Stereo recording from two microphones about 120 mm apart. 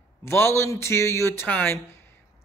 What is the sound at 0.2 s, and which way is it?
Speech, 20° left (ahead or behind).